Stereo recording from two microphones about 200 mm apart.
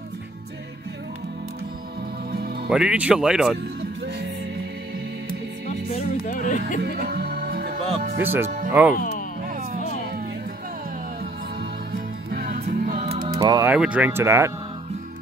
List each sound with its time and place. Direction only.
2.3 s music: 50° right (ahead or behind)
2.7 s speech: 5° right (ahead or behind)
5.9 s music: 40° left (ahead or behind)
6.8 s music: 50° right (ahead or behind)
8.2 s speech: 10° right (ahead or behind)
8.5 s speech: 40° right (ahead or behind)
8.9 s speech: 45° left (ahead or behind)
9.5 s music: 45° right (ahead or behind)
11.9 s music: 50° right (ahead or behind)
13.1 s music: 20° right (ahead or behind)
13.7 s speech: 5° right (ahead or behind)